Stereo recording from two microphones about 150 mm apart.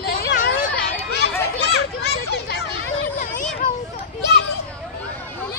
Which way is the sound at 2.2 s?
90° left.